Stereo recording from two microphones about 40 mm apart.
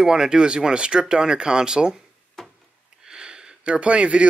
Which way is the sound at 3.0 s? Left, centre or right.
Centre.